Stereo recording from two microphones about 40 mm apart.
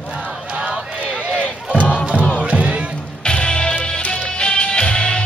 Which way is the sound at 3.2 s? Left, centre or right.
Left.